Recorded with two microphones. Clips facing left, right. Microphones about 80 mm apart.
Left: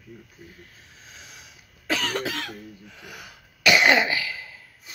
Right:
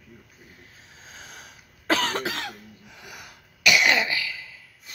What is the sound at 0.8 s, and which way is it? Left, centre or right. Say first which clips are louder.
Cough: right 2 dB; right.